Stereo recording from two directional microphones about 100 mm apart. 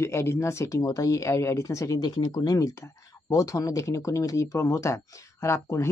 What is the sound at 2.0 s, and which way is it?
Speech, 45° left (ahead or behind).